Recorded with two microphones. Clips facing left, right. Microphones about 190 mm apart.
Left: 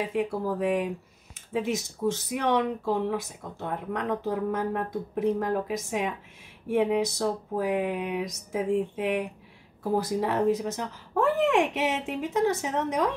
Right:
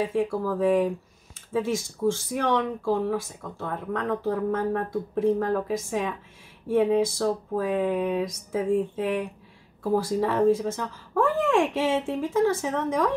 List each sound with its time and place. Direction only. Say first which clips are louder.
0.1 s speech: right 2 dB; 20° left (ahead or behind)